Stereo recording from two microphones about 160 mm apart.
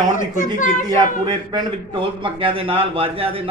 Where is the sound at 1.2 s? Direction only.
25° right (ahead or behind).